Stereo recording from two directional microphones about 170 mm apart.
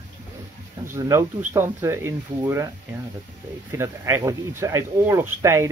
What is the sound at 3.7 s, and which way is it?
Speech, 15° right (ahead or behind).